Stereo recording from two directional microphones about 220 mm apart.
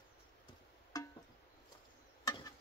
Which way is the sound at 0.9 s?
15° left (ahead or behind).